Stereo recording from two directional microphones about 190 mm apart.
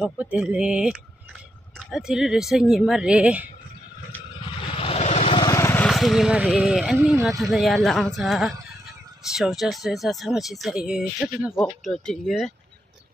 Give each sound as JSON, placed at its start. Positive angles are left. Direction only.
{"t": 0.0, "sound": "speech", "side_deg": -5}
{"t": 4.7, "sound": "vehicle", "side_deg": 30}
{"t": 5.5, "sound": "speech", "side_deg": 15}